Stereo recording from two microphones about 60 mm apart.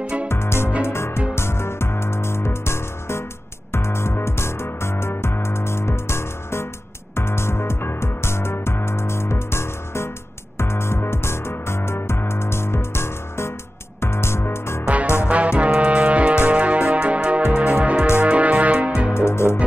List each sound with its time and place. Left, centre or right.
0.3 s music: left
15.2 s music: centre
19.1 s music: left